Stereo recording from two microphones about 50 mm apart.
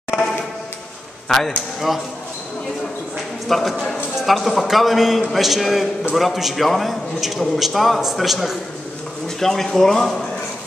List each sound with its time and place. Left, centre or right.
1.3 s a man's voice: centre
3.4 s a man's voice: centre